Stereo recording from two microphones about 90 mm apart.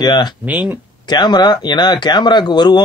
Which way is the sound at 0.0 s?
50° left (ahead or behind).